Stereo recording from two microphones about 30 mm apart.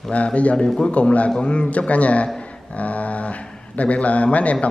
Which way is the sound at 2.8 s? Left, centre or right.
Left.